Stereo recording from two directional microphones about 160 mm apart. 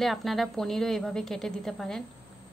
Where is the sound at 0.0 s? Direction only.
Centre (ahead or behind).